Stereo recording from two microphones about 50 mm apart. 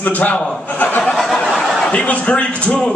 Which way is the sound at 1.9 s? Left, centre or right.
Left.